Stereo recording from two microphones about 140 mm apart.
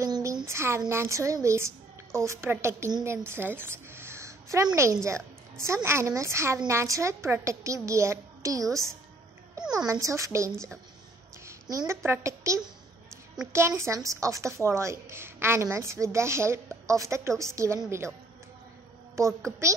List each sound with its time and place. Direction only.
0.0 s a sound: 25° right (ahead or behind)
0.5 s a woman's voice: 20° right (ahead or behind)
19.2 s a woman's voice: 20° right (ahead or behind)